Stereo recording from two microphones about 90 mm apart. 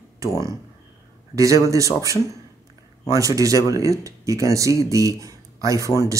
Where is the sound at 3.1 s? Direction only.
40° right (ahead or behind).